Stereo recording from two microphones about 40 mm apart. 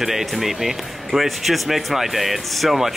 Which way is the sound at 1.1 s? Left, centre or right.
Centre.